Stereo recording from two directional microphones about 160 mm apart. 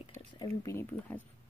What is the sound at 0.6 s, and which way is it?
Speech, 15° left (ahead or behind).